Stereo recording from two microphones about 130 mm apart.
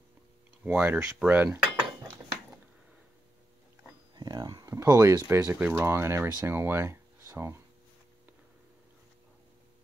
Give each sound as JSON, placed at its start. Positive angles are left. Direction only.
{"t": 0.7, "sound": "speech", "side_deg": -15}
{"t": 4.1, "sound": "speech", "side_deg": -30}